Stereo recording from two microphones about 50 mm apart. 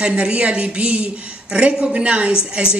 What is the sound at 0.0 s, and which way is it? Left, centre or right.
A woman's voice, right.